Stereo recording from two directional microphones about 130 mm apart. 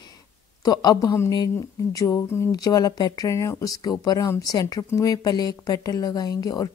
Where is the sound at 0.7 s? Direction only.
30° left (ahead or behind).